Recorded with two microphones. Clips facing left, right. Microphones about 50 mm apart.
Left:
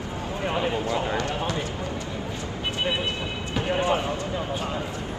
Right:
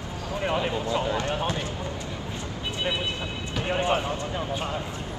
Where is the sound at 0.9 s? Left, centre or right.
Left.